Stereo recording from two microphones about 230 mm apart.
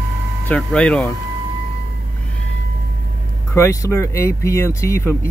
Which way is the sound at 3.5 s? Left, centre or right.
Centre.